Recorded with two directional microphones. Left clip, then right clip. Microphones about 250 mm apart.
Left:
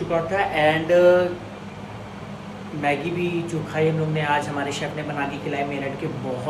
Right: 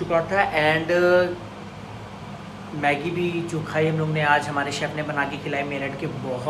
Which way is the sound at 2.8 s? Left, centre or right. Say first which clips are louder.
Right 1 dB; centre.